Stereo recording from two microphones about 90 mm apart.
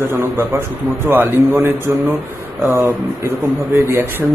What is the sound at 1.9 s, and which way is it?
Speech, 35° right (ahead or behind).